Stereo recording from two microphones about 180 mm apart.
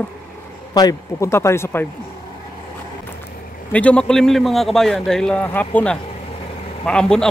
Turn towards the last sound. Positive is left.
turn(degrees=5)  # may be behind; listen again after turning